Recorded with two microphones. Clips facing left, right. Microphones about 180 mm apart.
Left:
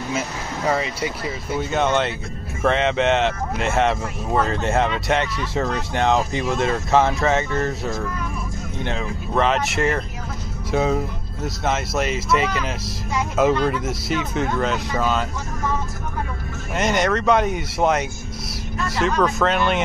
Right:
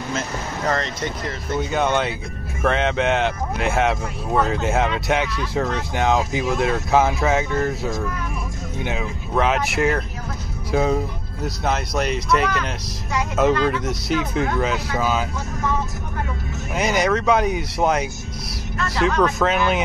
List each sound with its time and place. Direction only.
0.7 s speech: 10° left (ahead or behind)
16.7 s speech: centre (ahead or behind)